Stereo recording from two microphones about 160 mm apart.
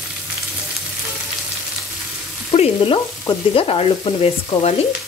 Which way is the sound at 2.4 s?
35° left (ahead or behind).